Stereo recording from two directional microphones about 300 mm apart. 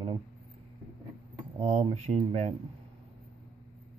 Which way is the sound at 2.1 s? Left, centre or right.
Right.